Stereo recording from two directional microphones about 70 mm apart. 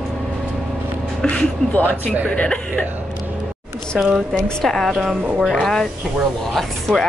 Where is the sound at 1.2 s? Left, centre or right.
Left.